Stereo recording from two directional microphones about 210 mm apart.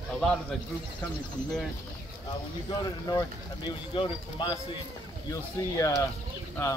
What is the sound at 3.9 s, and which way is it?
Speech, 25° left (ahead or behind).